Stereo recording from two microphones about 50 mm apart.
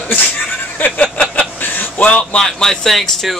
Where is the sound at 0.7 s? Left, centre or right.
Left.